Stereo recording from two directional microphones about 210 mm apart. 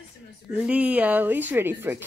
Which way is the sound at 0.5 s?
5° right (ahead or behind).